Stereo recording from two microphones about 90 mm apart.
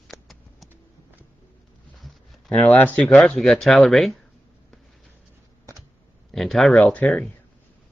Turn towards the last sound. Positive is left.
turn(degrees=15)  # may be behind; listen again after turning